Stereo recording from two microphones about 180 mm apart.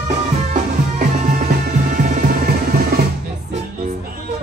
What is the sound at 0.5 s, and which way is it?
Music, 50° right (ahead or behind).